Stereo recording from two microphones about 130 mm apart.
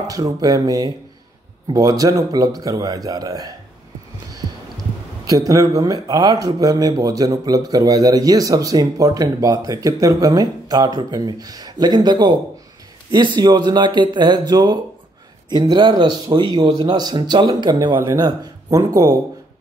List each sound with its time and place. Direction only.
0.0 s speech: 30° right (ahead or behind)
5.2 s speech: 30° right (ahead or behind)